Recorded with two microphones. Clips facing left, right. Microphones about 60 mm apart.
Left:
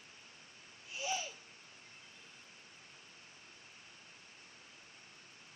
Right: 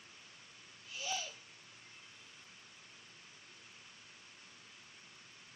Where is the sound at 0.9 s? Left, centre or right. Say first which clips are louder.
Left 2 dB; left.